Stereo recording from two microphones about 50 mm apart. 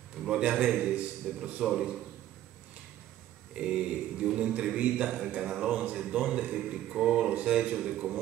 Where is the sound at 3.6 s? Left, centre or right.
Centre.